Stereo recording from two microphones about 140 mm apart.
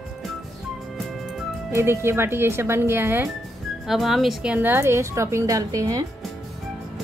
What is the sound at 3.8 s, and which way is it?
Speech, centre (ahead or behind).